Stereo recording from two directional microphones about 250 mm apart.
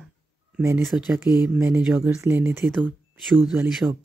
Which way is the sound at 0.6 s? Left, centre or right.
Centre.